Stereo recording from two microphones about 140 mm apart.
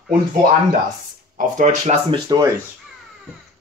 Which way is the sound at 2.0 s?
30° right (ahead or behind).